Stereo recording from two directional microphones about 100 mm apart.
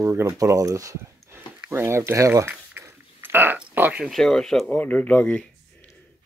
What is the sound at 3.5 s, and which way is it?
Speech, 15° right (ahead or behind).